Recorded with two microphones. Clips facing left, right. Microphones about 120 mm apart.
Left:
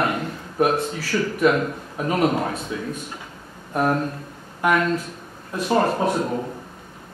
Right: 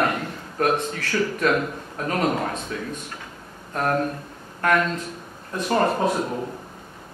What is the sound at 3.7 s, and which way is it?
Speech, 10° left (ahead or behind).